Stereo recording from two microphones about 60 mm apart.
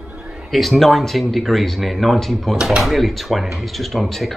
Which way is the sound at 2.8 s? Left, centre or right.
Centre.